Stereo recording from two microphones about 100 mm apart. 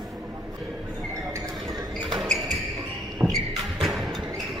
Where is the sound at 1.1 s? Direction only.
30° right (ahead or behind).